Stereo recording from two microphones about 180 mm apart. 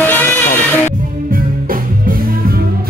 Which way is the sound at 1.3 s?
50° right (ahead or behind).